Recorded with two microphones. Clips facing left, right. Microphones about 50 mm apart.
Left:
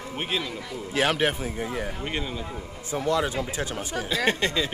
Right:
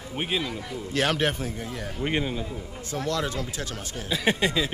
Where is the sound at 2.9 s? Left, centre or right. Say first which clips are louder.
Left 3 dB; centre.